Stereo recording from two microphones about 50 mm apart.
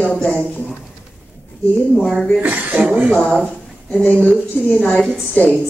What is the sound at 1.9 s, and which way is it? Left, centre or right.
Speech, left.